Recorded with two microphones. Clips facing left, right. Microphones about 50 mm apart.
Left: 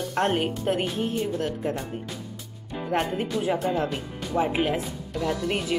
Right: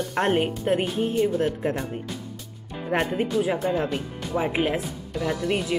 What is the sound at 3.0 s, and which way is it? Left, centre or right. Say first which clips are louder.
Speech: right 3 dB; centre.